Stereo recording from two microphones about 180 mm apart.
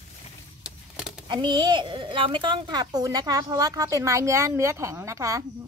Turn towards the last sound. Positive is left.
turn(degrees=-15)  # may be behind; listen again after turning